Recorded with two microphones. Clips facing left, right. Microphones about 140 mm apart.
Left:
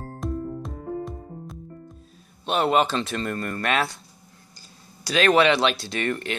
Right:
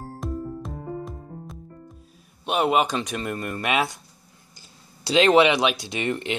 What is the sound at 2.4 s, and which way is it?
Speech, 10° right (ahead or behind).